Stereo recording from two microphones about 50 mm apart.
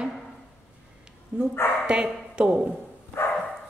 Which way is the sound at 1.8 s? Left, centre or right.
Right.